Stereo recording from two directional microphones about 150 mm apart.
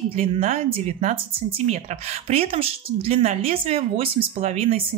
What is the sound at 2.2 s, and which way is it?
Speech, 40° right (ahead or behind).